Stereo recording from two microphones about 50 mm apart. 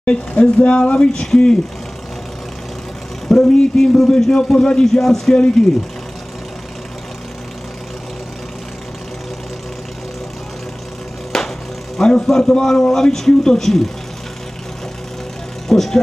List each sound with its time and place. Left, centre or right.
0.0 s a man's voice: left
3.3 s a man's voice: centre
11.3 s music: centre
12.0 s a man's voice: centre
15.7 s a man's voice: centre